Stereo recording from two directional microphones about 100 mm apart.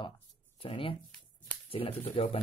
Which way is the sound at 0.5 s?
65° left (ahead or behind).